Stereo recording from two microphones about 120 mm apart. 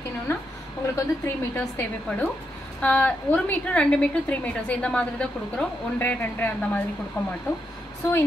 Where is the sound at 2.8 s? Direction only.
10° left (ahead or behind).